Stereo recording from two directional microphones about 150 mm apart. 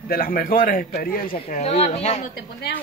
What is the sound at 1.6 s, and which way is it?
Speech, 45° left (ahead or behind).